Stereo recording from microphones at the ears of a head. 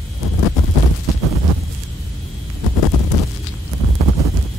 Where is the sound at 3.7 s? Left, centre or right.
Right.